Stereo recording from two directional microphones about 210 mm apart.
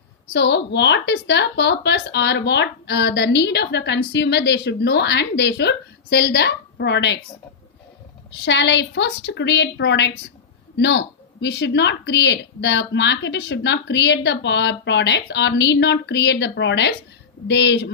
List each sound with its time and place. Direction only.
0.3 s a woman's voice: 55° left (ahead or behind)
8.5 s a woman's voice: 60° left (ahead or behind)